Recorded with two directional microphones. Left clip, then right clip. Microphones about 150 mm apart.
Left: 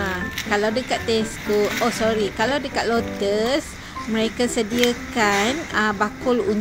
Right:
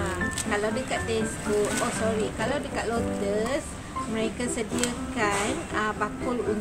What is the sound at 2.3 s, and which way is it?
A woman's voice, 40° left (ahead or behind).